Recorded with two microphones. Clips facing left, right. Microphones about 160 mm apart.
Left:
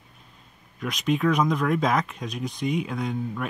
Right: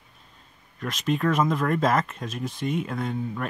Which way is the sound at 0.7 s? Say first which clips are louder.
Left 1 dB; centre (ahead or behind).